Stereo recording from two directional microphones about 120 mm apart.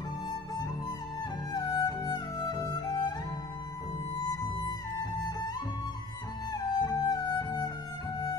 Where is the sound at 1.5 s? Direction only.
35° left (ahead or behind).